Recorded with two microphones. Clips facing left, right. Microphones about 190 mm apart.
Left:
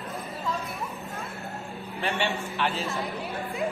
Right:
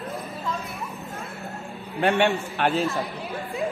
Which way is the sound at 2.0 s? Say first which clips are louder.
Right 8 dB; 55° right (ahead or behind).